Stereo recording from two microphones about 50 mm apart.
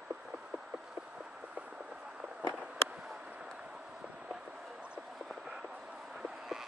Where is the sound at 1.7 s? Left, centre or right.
Centre.